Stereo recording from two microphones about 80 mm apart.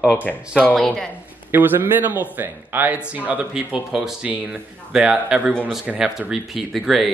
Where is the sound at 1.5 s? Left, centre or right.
Right; by 7.0 s centre.